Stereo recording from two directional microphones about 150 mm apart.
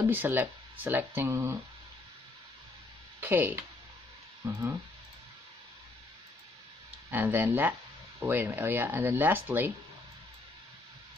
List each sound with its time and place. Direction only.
0.1 s speech: 15° right (ahead or behind)
3.2 s speech: 15° right (ahead or behind)
7.1 s speech: 15° right (ahead or behind)